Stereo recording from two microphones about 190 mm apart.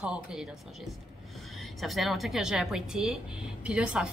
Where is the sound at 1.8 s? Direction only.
Centre (ahead or behind).